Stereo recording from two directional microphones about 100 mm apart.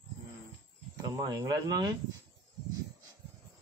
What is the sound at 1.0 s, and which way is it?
Speech, 40° right (ahead or behind).